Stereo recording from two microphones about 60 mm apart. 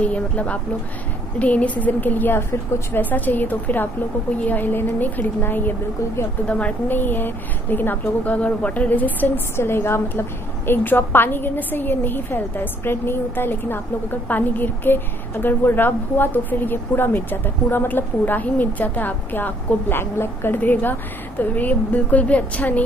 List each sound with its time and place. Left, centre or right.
0.0 s a woman's voice: left
6.4 s speech: left
7.0 s speech: left
9.6 s a woman's voice: left